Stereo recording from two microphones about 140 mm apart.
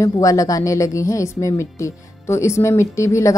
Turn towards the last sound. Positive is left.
turn(degrees=20)  # may be behind; listen again after turning